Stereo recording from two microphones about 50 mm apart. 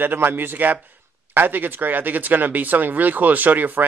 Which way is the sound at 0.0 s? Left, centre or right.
Right.